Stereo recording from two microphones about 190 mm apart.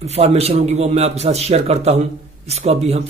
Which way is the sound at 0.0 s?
35° right (ahead or behind).